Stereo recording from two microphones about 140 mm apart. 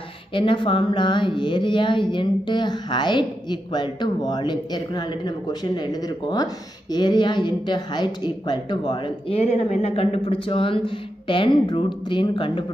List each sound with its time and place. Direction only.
0.3 s speech: 40° left (ahead or behind)
9.4 s speech: 50° left (ahead or behind)